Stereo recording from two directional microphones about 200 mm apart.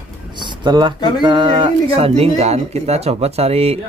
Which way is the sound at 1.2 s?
20° right (ahead or behind).